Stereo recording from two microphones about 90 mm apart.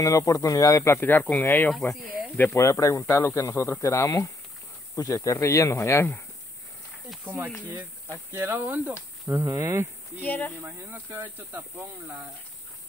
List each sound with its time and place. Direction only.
0.0 s speech: 40° left (ahead or behind)
0.9 s speech: 20° left (ahead or behind)
2.5 s speech: 35° left (ahead or behind)
7.2 s speech: 25° right (ahead or behind)
9.3 s speech: 35° right (ahead or behind)
10.2 s speech: 20° left (ahead or behind)
11.1 s speech: 25° right (ahead or behind)